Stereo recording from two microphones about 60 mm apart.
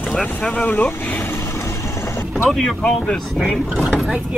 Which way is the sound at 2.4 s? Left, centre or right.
Centre.